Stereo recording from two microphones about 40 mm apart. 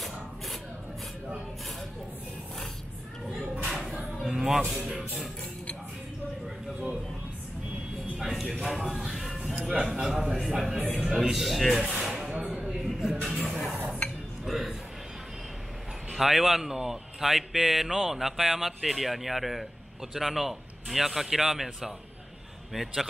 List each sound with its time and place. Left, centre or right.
3.6 s a sound: centre
4.3 s speech: centre
8.2 s music: centre
9.7 s speech: centre
10.8 s speech: right
11.1 s a man's voice: centre
12.0 s a sound: centre
12.4 s a sound: right
12.6 s a sound: centre
13.4 s a man's voice: centre
16.1 s speech: centre
22.7 s a man's voice: centre